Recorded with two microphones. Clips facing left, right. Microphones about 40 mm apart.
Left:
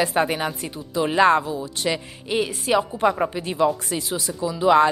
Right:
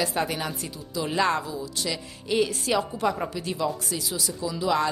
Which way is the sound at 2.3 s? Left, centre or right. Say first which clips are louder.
Left 3 dB; centre.